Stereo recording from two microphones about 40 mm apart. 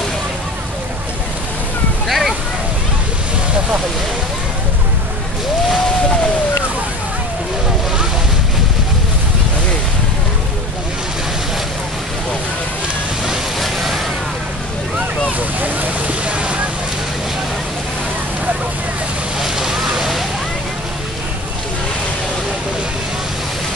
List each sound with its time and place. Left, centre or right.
2.0 s a sound: centre
13.6 s vehicle: centre
16.3 s boat: right
19.4 s vehicle: centre